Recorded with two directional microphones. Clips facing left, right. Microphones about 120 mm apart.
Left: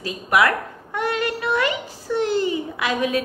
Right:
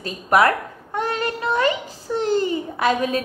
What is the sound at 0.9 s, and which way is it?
Child singing, 35° right (ahead or behind).